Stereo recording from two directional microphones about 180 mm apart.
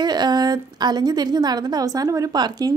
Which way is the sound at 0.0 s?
25° right (ahead or behind).